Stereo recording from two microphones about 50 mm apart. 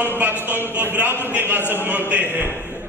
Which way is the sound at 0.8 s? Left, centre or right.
Right.